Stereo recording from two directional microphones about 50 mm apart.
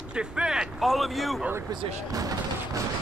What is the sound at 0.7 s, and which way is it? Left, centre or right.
Speech, centre.